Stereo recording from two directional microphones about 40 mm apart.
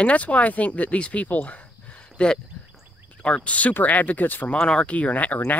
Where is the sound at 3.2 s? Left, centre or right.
Left.